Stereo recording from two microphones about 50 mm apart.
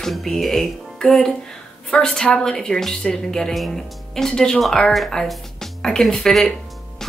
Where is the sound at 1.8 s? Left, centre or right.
Centre.